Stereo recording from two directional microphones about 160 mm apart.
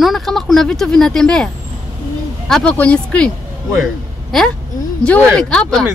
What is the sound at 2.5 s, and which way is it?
Speech, 5° left (ahead or behind).